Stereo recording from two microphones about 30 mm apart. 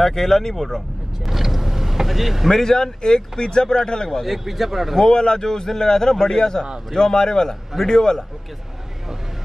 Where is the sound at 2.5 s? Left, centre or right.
Centre.